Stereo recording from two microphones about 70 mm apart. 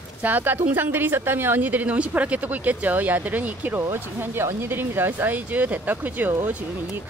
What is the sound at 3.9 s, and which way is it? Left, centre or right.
Speech, right.